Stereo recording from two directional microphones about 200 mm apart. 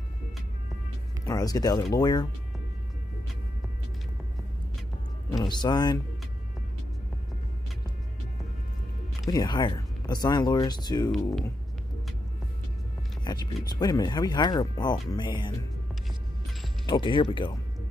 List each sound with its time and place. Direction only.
1.2 s speech: 20° left (ahead or behind)
5.3 s speech: 20° left (ahead or behind)
9.3 s speech: 20° left (ahead or behind)
13.2 s speech: 20° left (ahead or behind)
16.8 s speech: 20° left (ahead or behind)